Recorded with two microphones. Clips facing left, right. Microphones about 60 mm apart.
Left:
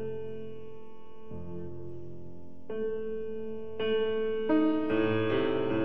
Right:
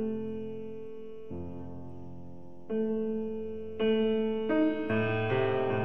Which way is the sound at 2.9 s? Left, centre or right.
Centre.